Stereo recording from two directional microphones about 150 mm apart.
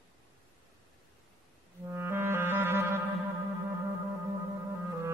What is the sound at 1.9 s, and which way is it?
Music, 15° right (ahead or behind).